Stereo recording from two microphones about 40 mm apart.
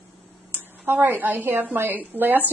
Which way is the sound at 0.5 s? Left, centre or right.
Right.